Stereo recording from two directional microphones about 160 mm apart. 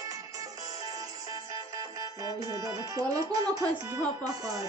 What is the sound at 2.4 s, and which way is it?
Speech, 20° right (ahead or behind).